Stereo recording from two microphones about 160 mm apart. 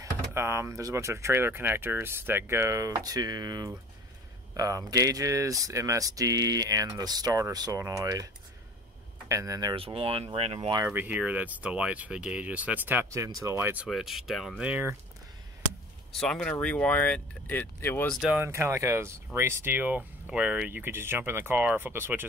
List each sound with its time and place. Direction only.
0.0 s speech: 15° right (ahead or behind)
9.3 s speech: 20° right (ahead or behind); by 10.7 s 40° right (ahead or behind)
10.9 s speech: 10° right (ahead or behind)
13.8 s speech: centre (ahead or behind)
16.1 s speech: 5° left (ahead or behind)
18.2 s speech: 10° right (ahead or behind)